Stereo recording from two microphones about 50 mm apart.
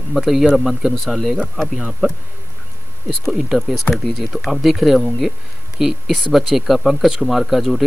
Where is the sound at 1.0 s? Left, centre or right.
Centre.